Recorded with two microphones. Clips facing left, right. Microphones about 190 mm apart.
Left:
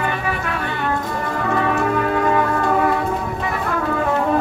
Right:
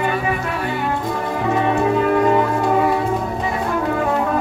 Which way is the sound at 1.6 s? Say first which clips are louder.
Right 3 dB; 20° right (ahead or behind).